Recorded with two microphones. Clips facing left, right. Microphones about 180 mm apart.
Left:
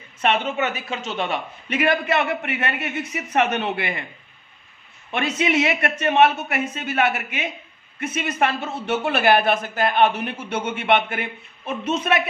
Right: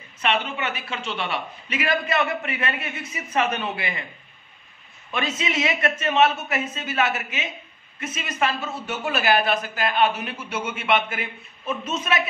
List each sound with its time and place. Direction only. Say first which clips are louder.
0.2 s a woman's voice: left 4 dB; 45° left (ahead or behind); by 4.0 s 60° left (ahead or behind)
5.1 s a woman's voice: left 5 dB; 65° left (ahead or behind)